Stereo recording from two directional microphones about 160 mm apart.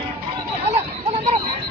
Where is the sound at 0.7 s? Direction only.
40° right (ahead or behind).